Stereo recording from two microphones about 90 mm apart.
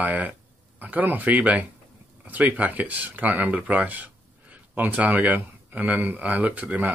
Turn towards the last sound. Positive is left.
turn(degrees=-20)  # may be behind; listen again after turning